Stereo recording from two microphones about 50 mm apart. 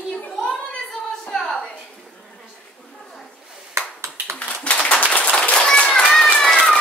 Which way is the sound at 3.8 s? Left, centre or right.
Right.